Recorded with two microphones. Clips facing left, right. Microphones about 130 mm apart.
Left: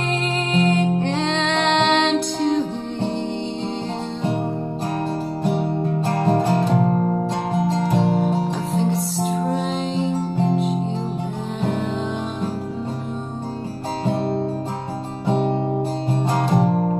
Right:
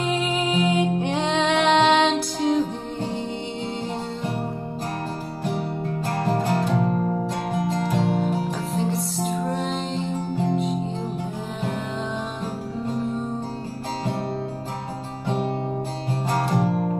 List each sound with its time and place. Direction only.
0.0 s music: 5° right (ahead or behind)
6.2 s music: 25° left (ahead or behind)
8.5 s music: centre (ahead or behind)
15.2 s music: 25° left (ahead or behind)